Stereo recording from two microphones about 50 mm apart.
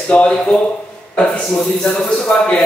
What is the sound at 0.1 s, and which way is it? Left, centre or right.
Speech, left.